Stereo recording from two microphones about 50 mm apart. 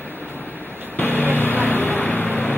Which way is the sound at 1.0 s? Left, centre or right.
Left.